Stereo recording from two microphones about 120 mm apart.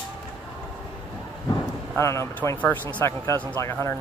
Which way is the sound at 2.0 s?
25° left (ahead or behind).